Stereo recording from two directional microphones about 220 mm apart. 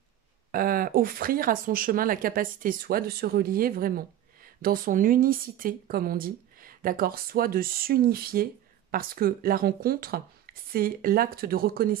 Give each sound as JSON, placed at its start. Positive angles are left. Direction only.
{"t": 0.5, "sound": "speech", "side_deg": -40}